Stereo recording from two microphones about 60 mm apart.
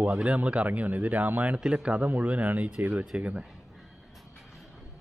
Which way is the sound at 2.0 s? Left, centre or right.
Right.